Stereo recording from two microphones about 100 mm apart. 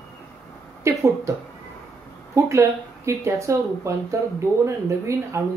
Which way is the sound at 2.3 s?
30° right (ahead or behind).